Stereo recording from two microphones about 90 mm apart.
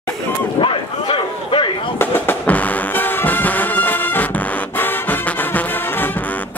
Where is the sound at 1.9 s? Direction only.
25° left (ahead or behind).